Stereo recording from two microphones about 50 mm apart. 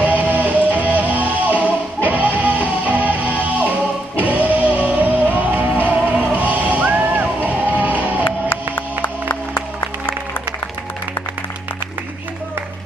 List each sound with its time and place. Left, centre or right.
0.0 s music: right
8.2 s music: left